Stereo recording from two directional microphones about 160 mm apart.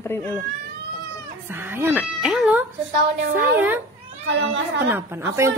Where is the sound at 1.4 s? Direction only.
15° right (ahead or behind).